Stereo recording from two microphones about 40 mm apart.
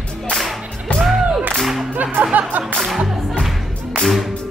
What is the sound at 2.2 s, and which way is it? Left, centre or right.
Music, right.